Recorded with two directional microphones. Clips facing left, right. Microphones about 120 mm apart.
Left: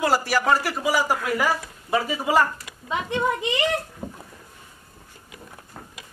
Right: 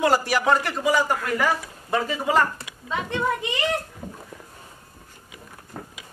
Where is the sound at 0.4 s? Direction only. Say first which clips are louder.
Even; 5° left (ahead or behind).